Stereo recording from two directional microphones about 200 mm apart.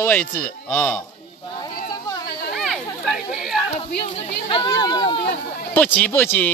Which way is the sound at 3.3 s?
Centre (ahead or behind).